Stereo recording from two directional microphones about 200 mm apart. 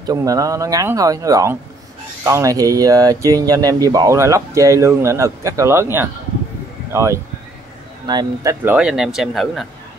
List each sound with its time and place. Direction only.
0.0 s speech: 20° right (ahead or behind)
8.7 s speech: 5° right (ahead or behind)